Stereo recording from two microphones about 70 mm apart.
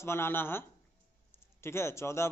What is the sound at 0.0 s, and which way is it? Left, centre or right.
Speech, left.